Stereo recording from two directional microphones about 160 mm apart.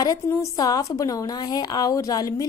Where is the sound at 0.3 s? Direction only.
20° left (ahead or behind).